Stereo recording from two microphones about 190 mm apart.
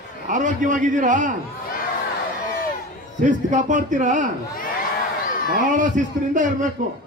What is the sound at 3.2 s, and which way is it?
A man's voice, 40° right (ahead or behind).